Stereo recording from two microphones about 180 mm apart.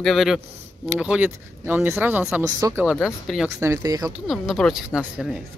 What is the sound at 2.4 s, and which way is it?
Speech, 20° right (ahead or behind).